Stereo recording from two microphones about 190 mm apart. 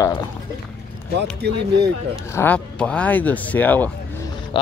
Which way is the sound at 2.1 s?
10° left (ahead or behind).